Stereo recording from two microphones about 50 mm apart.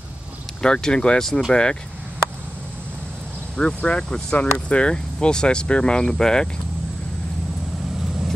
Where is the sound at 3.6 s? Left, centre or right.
Centre.